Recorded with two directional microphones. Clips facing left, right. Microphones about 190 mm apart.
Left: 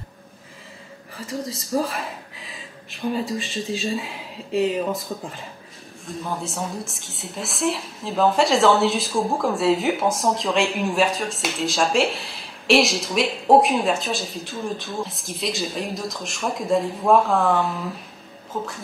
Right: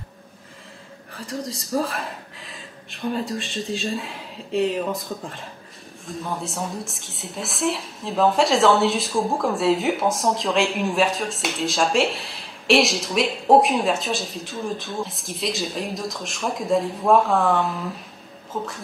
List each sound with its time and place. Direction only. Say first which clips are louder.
1.1 s a woman's voice: left 1 dB; centre (ahead or behind)